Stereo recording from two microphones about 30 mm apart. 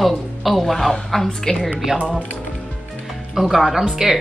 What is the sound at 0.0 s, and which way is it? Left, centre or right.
Speech, centre.